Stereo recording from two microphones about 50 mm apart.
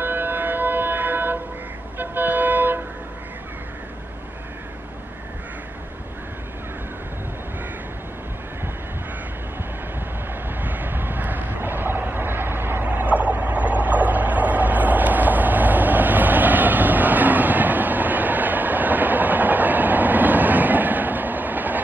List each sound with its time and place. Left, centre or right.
0.0 s a sound: right
2.0 s vehicle: right
10.6 s vehicle: right